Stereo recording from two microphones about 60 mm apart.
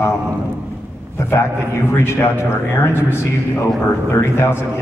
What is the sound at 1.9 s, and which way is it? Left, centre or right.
A man's voice, left.